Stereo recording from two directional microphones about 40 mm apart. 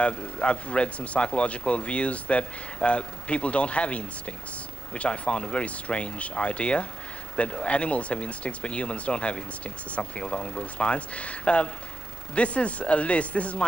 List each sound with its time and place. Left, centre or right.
0.0 s speech: left